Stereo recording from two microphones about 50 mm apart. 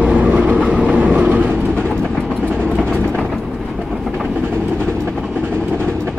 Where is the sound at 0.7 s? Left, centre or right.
Centre.